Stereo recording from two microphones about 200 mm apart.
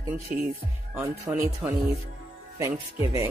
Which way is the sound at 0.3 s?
45° right (ahead or behind).